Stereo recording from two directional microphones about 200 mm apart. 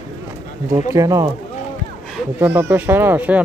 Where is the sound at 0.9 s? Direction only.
15° right (ahead or behind).